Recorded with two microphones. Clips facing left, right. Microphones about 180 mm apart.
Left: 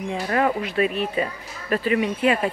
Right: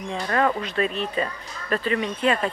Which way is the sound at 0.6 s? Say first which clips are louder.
Left 3 dB; 10° left (ahead or behind).